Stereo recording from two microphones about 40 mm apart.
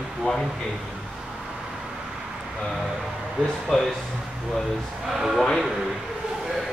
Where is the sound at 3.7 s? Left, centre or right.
Centre.